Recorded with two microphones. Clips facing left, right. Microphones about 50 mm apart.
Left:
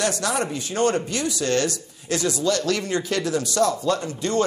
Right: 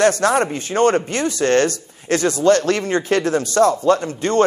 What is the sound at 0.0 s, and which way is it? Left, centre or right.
Speech, right.